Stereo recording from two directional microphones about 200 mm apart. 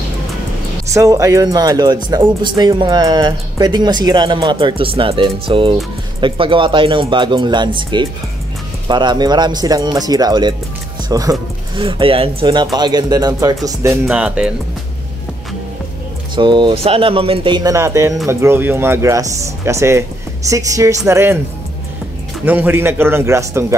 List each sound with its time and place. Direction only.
0.8 s speech: 15° right (ahead or behind)
14.0 s speech: 5° right (ahead or behind)
16.3 s speech: 25° right (ahead or behind)
22.4 s speech: 10° right (ahead or behind)